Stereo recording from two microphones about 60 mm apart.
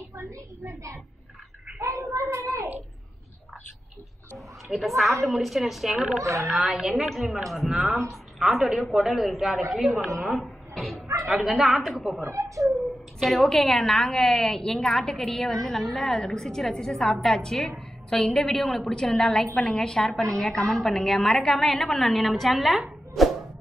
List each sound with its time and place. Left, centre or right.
0.1 s a woman's voice: right
1.8 s a sound: right
4.6 s a woman's voice: centre
10.2 s dog: centre
11.2 s a woman's voice: centre
12.3 s speech: right
13.2 s a woman's voice: centre